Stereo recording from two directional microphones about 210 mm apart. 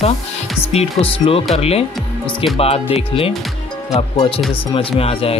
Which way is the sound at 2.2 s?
Centre (ahead or behind).